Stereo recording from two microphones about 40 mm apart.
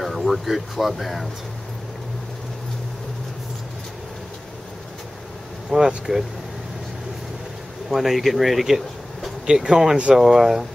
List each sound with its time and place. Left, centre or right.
0.0 s speech: centre
5.7 s speech: centre
7.9 s speech: centre
9.5 s speech: right
10.1 s speech: centre